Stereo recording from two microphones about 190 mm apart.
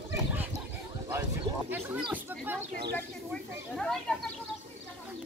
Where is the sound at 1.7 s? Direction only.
10° right (ahead or behind).